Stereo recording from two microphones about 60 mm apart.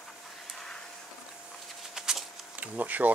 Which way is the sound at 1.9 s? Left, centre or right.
Centre.